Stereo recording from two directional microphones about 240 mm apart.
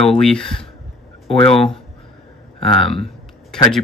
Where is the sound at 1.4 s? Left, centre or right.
Left.